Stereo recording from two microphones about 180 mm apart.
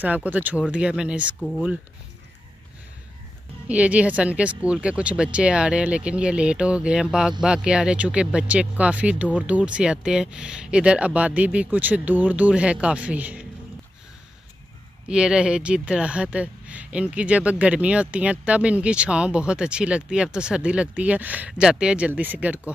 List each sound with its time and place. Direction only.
0.0 s speech: 10° right (ahead or behind)
3.6 s speech: 5° right (ahead or behind)
15.0 s speech: 5° right (ahead or behind)